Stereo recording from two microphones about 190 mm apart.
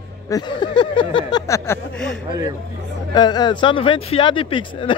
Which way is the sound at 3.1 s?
20° left (ahead or behind).